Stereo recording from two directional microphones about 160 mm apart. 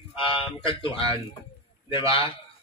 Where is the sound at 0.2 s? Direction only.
30° left (ahead or behind).